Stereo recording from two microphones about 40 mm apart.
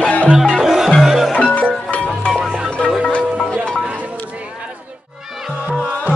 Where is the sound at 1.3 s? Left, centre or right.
Left.